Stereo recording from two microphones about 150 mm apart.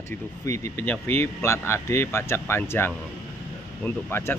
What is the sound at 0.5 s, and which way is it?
Speech, 15° left (ahead or behind).